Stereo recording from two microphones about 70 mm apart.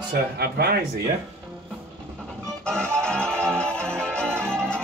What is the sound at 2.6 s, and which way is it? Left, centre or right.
Music, centre.